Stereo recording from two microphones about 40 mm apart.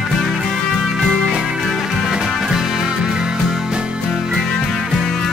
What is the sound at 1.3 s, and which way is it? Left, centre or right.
Music, centre.